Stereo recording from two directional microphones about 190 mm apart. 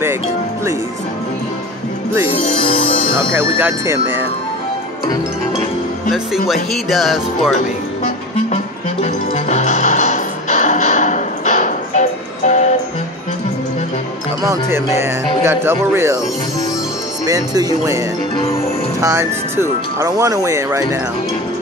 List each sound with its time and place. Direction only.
2.6 s speech: 30° left (ahead or behind)
3.2 s speech: 15° right (ahead or behind)
6.1 s speech: centre (ahead or behind)
9.0 s music: 35° left (ahead or behind)
14.4 s speech: 15° right (ahead or behind)
17.3 s speech: 20° right (ahead or behind)